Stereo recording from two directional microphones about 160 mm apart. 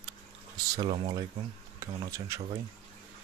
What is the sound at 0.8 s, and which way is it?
Speech, 40° right (ahead or behind).